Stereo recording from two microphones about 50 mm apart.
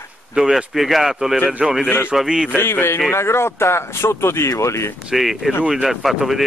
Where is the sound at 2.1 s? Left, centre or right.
Centre.